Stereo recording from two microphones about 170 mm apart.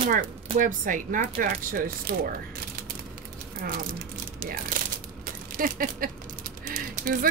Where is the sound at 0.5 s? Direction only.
50° right (ahead or behind).